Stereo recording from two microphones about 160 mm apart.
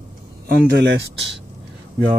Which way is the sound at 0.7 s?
90° right.